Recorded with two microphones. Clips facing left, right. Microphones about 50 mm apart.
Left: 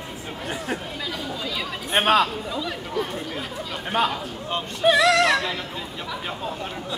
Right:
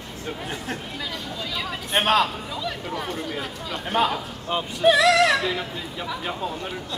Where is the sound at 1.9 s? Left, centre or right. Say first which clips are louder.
Left 1 dB; centre.